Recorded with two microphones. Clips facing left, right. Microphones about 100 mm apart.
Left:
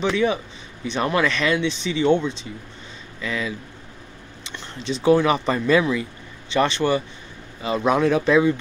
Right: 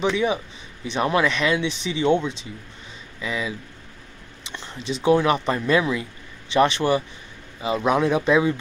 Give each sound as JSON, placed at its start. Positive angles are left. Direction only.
{"t": 0.0, "sound": "speech", "side_deg": -5}
{"t": 3.2, "sound": "speech", "side_deg": -15}
{"t": 5.0, "sound": "speech", "side_deg": 0}